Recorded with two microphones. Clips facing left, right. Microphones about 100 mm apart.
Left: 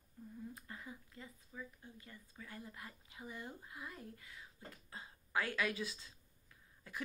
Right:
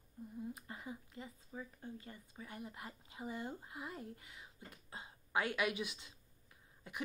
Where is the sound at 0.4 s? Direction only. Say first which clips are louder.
Right 4 dB; 25° right (ahead or behind).